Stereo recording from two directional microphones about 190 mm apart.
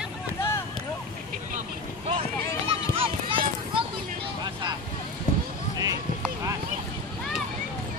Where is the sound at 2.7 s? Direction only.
30° right (ahead or behind).